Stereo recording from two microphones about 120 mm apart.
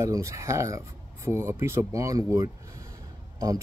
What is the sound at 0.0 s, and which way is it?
Speech, 25° right (ahead or behind).